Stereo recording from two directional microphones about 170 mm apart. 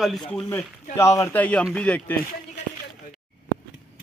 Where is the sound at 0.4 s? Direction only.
15° left (ahead or behind).